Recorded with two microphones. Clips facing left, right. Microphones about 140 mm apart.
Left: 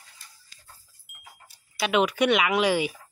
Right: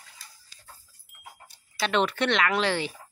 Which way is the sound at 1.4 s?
5° left (ahead or behind).